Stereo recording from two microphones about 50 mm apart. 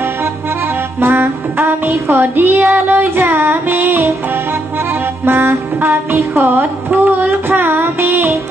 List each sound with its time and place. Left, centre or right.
1.0 s music: right
5.2 s music: right
6.9 s child singing: right